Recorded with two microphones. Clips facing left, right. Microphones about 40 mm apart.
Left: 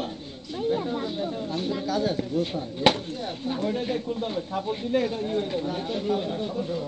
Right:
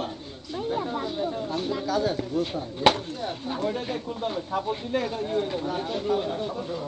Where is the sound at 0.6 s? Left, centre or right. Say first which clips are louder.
Left 2 dB; centre.